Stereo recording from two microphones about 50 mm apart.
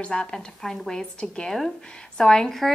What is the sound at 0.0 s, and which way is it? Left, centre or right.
A woman's voice, centre.